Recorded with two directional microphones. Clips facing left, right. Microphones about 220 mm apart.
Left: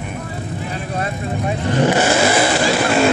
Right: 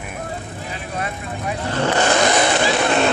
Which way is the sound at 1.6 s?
15° left (ahead or behind).